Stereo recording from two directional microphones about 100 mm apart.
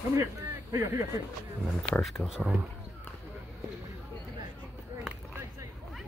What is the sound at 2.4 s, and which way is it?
Speech, 15° right (ahead or behind).